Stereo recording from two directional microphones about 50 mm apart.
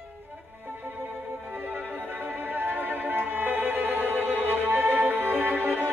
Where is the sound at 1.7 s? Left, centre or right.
Right.